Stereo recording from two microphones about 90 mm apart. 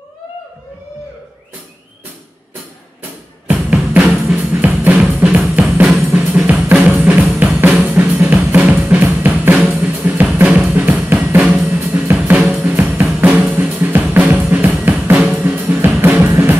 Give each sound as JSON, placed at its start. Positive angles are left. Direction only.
{"t": 3.4, "sound": "drum", "side_deg": -15}
{"t": 9.8, "sound": "music", "side_deg": -15}
{"t": 11.1, "sound": "drum kit", "side_deg": -10}
{"t": 12.6, "sound": "drum", "side_deg": -20}
{"t": 13.6, "sound": "drum kit", "side_deg": -20}
{"t": 14.5, "sound": "drum", "side_deg": -20}
{"t": 15.4, "sound": "drum kit", "side_deg": -20}